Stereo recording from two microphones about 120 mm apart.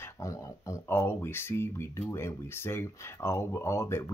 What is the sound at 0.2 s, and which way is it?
Speech, 25° left (ahead or behind).